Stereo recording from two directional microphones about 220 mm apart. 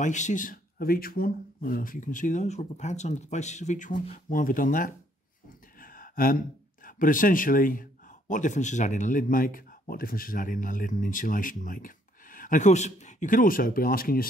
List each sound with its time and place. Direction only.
0.0 s a man's voice: 35° left (ahead or behind)